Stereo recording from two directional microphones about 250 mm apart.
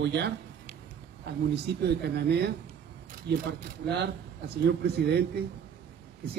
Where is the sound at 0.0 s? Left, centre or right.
Right.